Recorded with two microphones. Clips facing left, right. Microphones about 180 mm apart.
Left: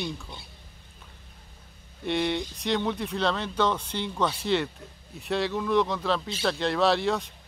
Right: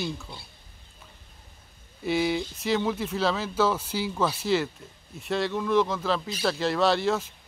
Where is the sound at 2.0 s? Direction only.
5° right (ahead or behind).